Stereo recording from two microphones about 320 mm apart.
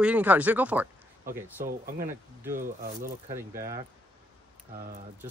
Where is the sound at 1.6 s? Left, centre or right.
Right.